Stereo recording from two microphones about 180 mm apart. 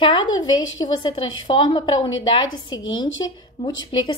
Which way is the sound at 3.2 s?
25° left (ahead or behind).